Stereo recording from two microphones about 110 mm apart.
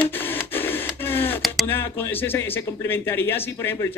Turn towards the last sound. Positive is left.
turn(degrees=20)  # may be behind; listen again after turning